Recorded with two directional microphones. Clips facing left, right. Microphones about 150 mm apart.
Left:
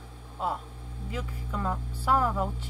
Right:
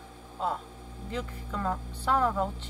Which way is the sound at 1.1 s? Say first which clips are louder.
Right 1 dB; 5° left (ahead or behind).